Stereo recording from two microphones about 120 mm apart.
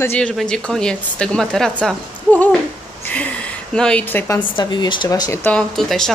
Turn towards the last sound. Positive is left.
turn(degrees=5)  # may be behind; listen again after turning